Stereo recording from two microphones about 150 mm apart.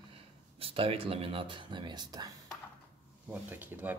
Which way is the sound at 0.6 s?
40° right (ahead or behind).